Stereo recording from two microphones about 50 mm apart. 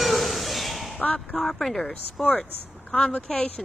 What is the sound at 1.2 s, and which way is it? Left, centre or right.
Speech, centre.